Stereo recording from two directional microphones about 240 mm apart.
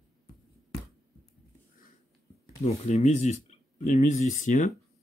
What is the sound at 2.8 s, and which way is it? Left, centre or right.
Speech, left.